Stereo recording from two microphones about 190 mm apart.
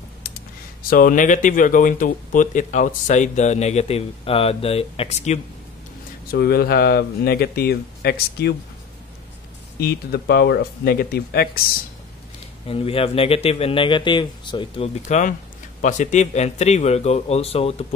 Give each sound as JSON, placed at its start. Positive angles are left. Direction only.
{"t": 0.8, "sound": "speech", "side_deg": 50}
{"t": 6.3, "sound": "speech", "side_deg": 55}
{"t": 9.8, "sound": "speech", "side_deg": 55}
{"t": 12.6, "sound": "a man's voice", "side_deg": 30}
{"t": 15.0, "sound": "speech", "side_deg": 40}